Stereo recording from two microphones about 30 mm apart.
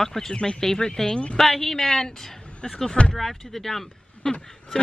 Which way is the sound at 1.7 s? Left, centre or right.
Centre.